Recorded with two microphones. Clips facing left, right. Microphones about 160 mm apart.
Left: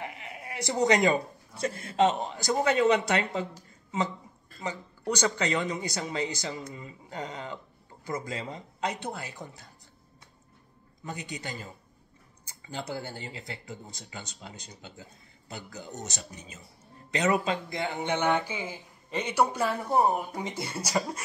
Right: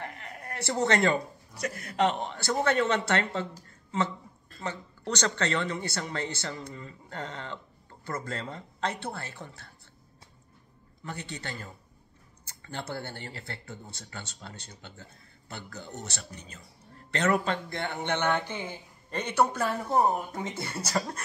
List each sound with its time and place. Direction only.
0.0 s a sound: 10° left (ahead or behind)
1.5 s speech: 25° left (ahead or behind)
4.6 s speech: 10° left (ahead or behind)
11.1 s speech: 15° left (ahead or behind)